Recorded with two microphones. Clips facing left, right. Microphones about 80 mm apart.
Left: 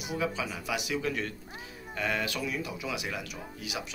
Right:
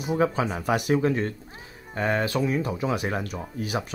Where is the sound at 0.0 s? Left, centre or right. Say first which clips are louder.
Right 8 dB; right.